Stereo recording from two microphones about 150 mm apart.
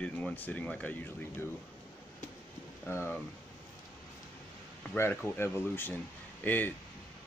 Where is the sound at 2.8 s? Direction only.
15° left (ahead or behind).